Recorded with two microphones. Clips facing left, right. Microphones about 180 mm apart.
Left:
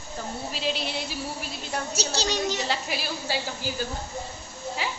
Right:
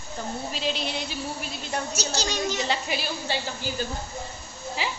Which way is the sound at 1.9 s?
30° left (ahead or behind).